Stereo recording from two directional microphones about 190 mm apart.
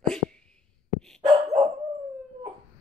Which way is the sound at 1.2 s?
35° right (ahead or behind).